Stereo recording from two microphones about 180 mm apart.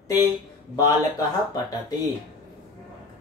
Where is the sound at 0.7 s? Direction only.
20° left (ahead or behind).